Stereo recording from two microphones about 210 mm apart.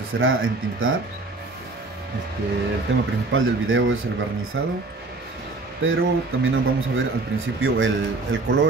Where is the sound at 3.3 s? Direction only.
70° right (ahead or behind).